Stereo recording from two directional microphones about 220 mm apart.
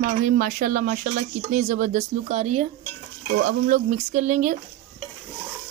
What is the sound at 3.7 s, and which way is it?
Speech, 35° right (ahead or behind).